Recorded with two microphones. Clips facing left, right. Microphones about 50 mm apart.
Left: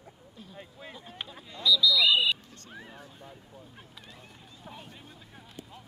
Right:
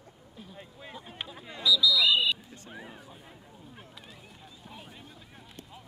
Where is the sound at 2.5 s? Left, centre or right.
Centre.